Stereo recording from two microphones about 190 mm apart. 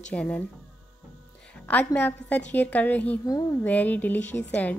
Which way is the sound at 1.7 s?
10° left (ahead or behind).